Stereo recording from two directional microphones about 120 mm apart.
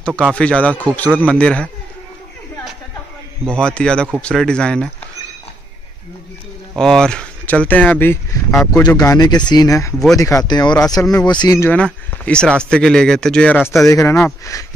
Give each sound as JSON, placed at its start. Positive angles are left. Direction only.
{"t": 0.3, "sound": "speech", "side_deg": 10}
{"t": 3.4, "sound": "speech", "side_deg": 10}
{"t": 6.8, "sound": "speech", "side_deg": 5}
{"t": 8.7, "sound": "speech", "side_deg": 30}
{"t": 11.7, "sound": "speech", "side_deg": 10}
{"t": 13.8, "sound": "speech", "side_deg": 25}